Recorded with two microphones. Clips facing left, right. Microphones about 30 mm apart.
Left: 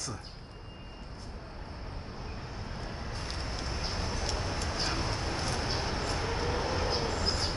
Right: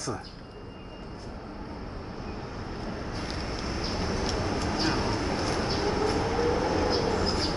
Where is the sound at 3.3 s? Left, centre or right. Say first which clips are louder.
Right 3 dB; centre.